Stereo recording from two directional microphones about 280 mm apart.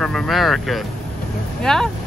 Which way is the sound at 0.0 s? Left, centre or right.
Centre.